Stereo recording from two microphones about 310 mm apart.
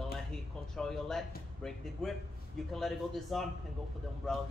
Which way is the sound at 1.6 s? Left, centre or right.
Centre.